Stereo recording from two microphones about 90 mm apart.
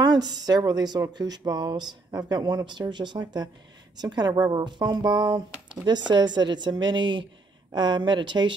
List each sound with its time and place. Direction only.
0.0 s a woman's voice: 50° right (ahead or behind)